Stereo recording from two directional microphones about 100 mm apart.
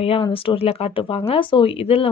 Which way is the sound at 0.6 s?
90° left.